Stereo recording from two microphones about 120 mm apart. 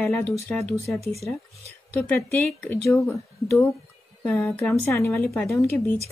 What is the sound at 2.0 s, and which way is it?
Speech, 20° left (ahead or behind).